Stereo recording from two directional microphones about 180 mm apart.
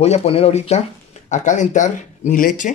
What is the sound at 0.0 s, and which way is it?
Speech, 35° left (ahead or behind).